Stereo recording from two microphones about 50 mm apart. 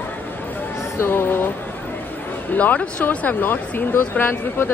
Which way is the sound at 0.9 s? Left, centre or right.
Left.